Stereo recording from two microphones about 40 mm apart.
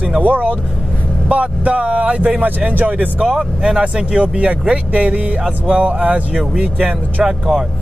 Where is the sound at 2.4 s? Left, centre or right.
Right.